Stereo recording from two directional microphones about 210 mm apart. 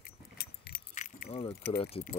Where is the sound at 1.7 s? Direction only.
25° left (ahead or behind).